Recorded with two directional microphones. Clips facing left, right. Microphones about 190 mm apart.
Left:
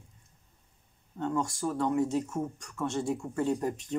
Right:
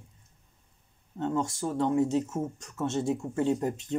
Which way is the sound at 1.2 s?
25° right (ahead or behind).